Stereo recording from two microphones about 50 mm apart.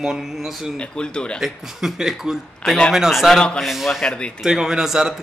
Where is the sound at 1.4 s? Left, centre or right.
Centre.